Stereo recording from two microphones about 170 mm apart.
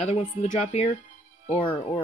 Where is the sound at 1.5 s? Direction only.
30° left (ahead or behind).